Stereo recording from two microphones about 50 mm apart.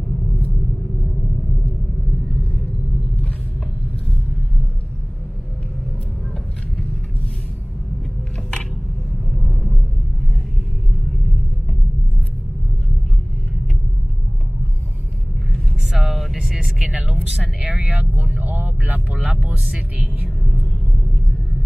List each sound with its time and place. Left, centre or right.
9.3 s vehicle: centre
15.9 s vehicle: centre
16.7 s a sound: centre
17.8 s vehicle: right
18.4 s vehicle: right